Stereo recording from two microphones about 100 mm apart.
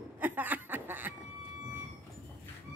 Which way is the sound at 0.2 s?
20° right (ahead or behind).